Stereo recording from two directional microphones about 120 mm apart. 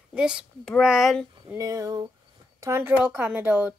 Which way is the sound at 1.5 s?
30° right (ahead or behind).